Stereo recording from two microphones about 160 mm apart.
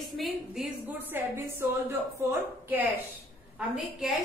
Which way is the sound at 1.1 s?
15° right (ahead or behind).